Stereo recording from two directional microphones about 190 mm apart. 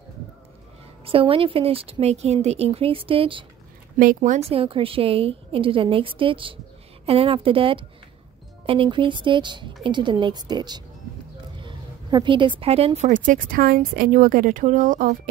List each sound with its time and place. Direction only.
1.0 s a woman's voice: 30° right (ahead or behind)
4.0 s a woman's voice: 45° right (ahead or behind)